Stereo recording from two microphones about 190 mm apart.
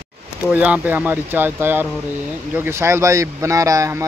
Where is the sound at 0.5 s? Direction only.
10° right (ahead or behind).